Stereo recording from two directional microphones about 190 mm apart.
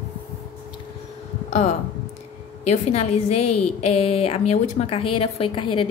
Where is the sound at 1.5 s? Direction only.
40° left (ahead or behind).